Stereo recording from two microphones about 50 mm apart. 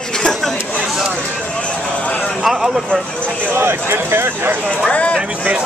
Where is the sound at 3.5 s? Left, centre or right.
Right.